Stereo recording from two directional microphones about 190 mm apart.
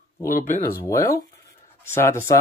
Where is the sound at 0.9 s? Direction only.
15° left (ahead or behind).